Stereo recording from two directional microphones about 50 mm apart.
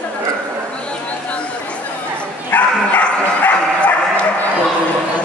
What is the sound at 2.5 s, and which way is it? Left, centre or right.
Bow-wow, left.